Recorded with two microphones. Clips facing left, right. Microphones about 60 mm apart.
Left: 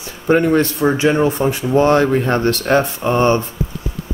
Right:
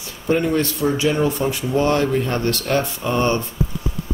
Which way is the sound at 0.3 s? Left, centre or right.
Left.